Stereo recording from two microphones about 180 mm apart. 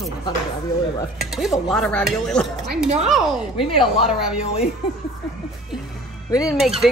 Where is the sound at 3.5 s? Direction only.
30° left (ahead or behind).